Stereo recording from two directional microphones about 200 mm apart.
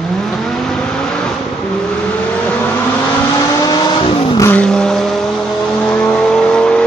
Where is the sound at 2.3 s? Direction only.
5° left (ahead or behind); by 4.5 s 25° left (ahead or behind).